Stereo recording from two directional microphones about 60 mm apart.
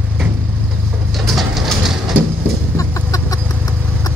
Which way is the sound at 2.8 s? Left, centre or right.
Left.